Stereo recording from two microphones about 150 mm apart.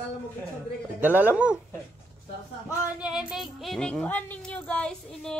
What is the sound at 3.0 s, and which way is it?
Speech, 5° right (ahead or behind).